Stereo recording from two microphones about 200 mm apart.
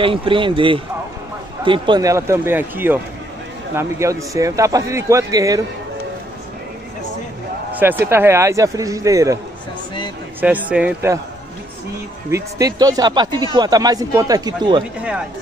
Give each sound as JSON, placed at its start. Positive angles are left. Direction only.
{"t": 0.0, "sound": "a man's voice", "side_deg": -25}
{"t": 7.8, "sound": "a man's voice", "side_deg": -10}
{"t": 10.4, "sound": "a man's voice", "side_deg": -5}
{"t": 12.3, "sound": "speech", "side_deg": -15}